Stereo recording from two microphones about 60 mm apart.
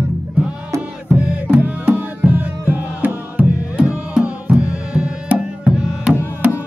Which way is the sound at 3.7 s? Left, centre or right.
Centre.